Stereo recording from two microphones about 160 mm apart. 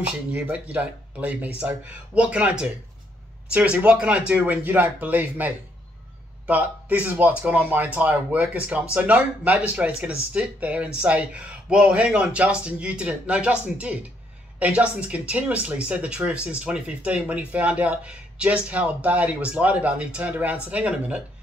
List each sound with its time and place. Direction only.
0.3 s speech: 10° right (ahead or behind)
3.5 s speech: 5° right (ahead or behind)